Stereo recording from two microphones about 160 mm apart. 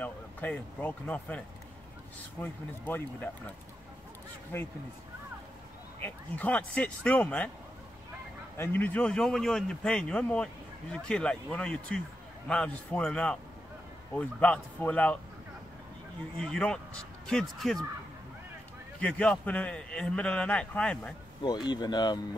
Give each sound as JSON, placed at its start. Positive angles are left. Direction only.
{"t": 0.0, "sound": "speech", "side_deg": 10}
{"t": 2.4, "sound": "a man's voice", "side_deg": 10}
{"t": 5.9, "sound": "a man's voice", "side_deg": 10}
{"t": 8.5, "sound": "a man's voice", "side_deg": 10}
{"t": 16.3, "sound": "speech", "side_deg": 5}
{"t": 18.9, "sound": "a man's voice", "side_deg": 5}
{"t": 21.4, "sound": "speech", "side_deg": 25}